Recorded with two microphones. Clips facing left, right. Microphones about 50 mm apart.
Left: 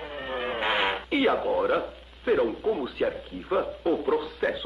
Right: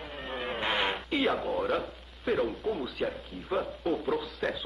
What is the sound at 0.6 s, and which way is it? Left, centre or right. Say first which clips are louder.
Radio: left 3 dB; centre.